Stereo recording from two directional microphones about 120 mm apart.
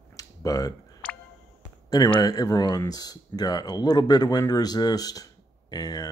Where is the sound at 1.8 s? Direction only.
35° left (ahead or behind).